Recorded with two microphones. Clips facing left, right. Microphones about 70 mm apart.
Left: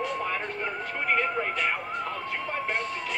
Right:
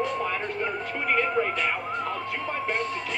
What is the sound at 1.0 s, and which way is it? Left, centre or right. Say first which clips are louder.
Emergency vehicle: right 2 dB; left.